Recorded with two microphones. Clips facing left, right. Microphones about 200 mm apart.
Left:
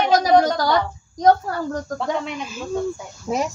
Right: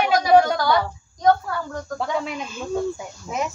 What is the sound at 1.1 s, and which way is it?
Speech, 40° left (ahead or behind).